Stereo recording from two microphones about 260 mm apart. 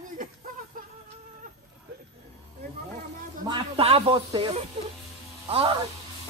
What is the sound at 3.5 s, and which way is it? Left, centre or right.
Speech, right.